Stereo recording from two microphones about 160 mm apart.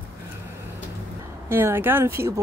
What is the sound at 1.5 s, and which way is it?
Speech, 15° right (ahead or behind).